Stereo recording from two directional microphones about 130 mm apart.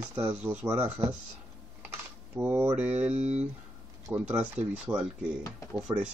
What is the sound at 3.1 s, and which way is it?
Speech, 55° right (ahead or behind).